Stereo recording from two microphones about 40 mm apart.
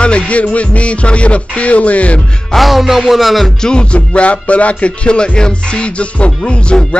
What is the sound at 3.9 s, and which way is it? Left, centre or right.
Music, left.